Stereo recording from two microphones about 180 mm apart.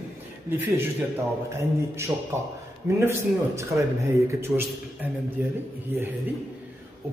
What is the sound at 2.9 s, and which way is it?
A man's voice, 15° right (ahead or behind).